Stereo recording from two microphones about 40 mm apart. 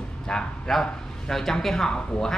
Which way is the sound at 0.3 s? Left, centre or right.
Centre.